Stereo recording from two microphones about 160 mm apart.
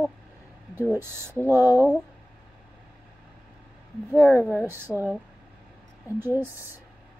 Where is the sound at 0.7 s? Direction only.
15° right (ahead or behind).